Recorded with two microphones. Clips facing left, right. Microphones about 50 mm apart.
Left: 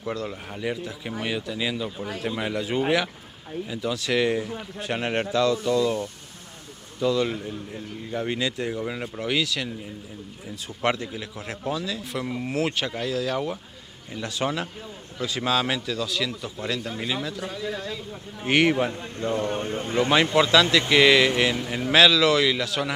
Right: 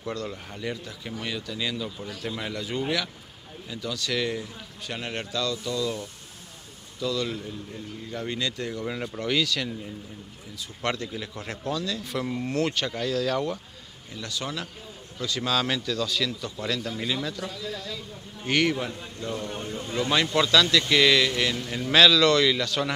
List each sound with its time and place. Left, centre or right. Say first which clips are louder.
0.0 s speech: left 2 dB; centre
10.8 s speech: left 4 dB; centre
14.1 s speech: left 6 dB; left; by 17.5 s centre
17.5 s speech: left 4 dB; left
18.4 s speech: left 4 dB; centre
19.1 s speech: left 7 dB; left
20.3 s speech: left 1 dB; left; by 22.9 s centre